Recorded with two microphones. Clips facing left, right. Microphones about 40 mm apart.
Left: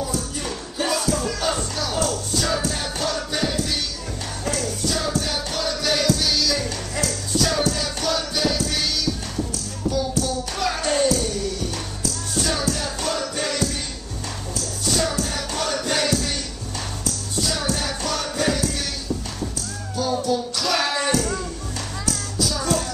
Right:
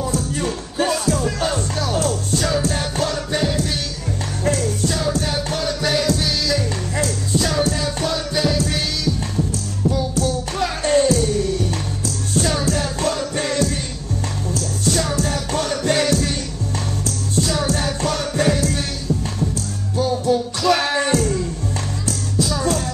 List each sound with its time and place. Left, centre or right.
0.4 s music: right
4.5 s music: right
5.5 s music: right
7.0 s music: right
10.6 s music: right
12.6 s music: right
20.0 s music: right
22.5 s music: right